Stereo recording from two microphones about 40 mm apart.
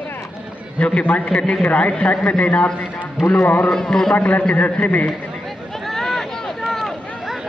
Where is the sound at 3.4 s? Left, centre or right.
Left.